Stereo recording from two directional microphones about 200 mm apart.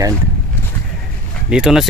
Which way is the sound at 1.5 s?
5° right (ahead or behind).